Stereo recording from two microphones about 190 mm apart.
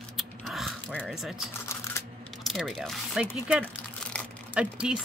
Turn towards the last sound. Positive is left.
turn(degrees=-5)  # may be behind; listen again after turning